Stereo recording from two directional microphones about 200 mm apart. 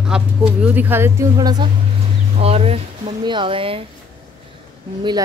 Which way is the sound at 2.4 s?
30° right (ahead or behind).